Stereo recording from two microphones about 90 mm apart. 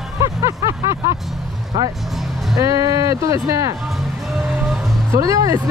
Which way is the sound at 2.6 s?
40° right (ahead or behind).